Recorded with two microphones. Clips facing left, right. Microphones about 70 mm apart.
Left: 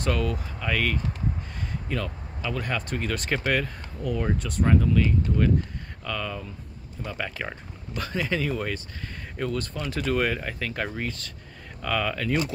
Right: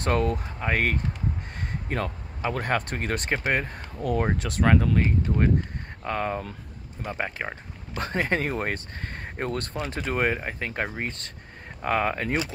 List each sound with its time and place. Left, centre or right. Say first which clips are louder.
0.0 s speech: right 3 dB; right
3.3 s speech: left 2 dB; right
4.0 s speech: right 3 dB; right
4.4 s speech: right 1 dB; right
4.9 s speech: left 1 dB; right
7.1 s speech: right 2 dB; right
8.0 s speech: right 2 dB; right
9.9 s speech: left 1 dB; right